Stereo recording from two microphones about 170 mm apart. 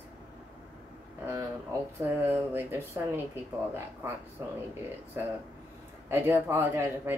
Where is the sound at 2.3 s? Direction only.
10° right (ahead or behind).